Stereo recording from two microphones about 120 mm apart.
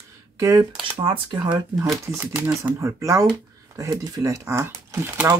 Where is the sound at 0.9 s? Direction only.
45° right (ahead or behind).